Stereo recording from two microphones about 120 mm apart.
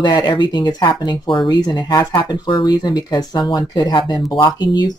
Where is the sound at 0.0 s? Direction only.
35° left (ahead or behind).